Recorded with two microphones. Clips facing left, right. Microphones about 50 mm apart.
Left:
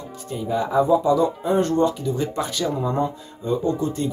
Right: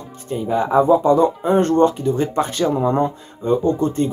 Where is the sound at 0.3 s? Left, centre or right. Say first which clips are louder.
Right 5 dB; right.